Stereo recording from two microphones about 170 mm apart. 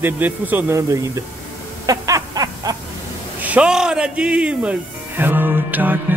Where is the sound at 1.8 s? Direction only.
20° right (ahead or behind).